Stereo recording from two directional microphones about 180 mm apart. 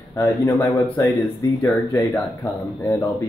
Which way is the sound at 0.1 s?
15° left (ahead or behind).